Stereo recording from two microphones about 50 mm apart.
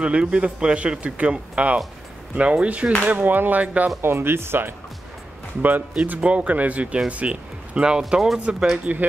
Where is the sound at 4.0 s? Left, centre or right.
Right.